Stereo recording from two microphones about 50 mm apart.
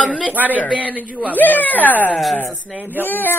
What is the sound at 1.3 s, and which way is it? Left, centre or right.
Speech, left.